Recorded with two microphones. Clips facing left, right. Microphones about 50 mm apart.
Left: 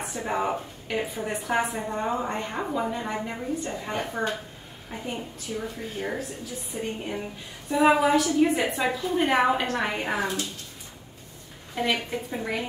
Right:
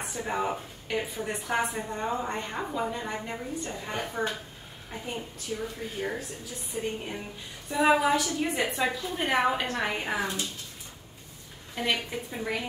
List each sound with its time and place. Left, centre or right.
0.0 s a woman's voice: centre
11.7 s a woman's voice: centre